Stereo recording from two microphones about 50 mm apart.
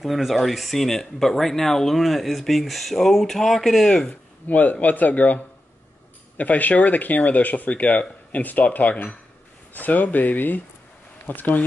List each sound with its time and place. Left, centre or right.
0.0 s speech: centre
4.1 s speech: left